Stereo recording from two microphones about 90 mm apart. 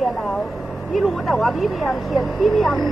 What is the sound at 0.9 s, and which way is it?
Speech, centre (ahead or behind).